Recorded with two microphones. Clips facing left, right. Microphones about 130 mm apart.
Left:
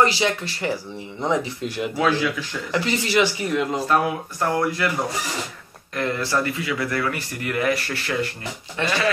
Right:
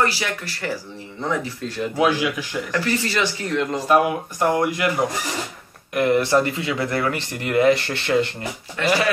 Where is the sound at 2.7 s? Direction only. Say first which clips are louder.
Left 2 dB; 20° left (ahead or behind).